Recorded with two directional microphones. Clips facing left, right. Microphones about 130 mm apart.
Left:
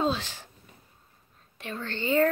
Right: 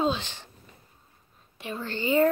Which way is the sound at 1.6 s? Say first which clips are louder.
Right 2 dB; 10° right (ahead or behind).